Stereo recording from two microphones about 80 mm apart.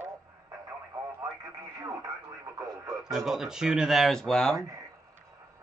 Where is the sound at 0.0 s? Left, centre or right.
Right.